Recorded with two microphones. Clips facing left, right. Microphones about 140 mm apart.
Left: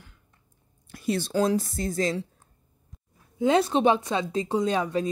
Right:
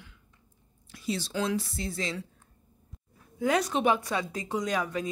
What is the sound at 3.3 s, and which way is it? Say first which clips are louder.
A woman's voice: left 5 dB; 25° left (ahead or behind).